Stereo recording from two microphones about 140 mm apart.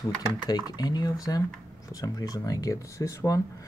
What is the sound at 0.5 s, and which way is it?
Speech, 30° left (ahead or behind).